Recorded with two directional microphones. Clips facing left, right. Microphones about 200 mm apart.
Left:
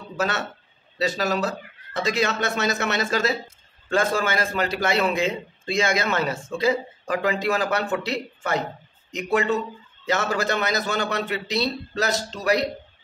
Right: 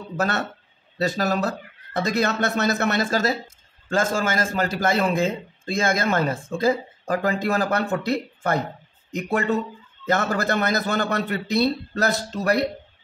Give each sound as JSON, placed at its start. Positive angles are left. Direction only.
{"t": 0.9, "sound": "speech", "side_deg": -55}